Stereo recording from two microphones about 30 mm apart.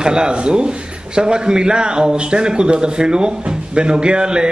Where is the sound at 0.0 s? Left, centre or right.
Right.